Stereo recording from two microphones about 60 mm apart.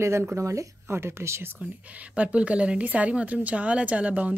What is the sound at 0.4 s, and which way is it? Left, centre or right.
Speech, right.